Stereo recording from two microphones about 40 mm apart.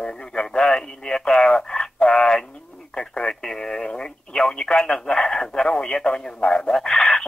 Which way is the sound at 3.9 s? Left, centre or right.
Left.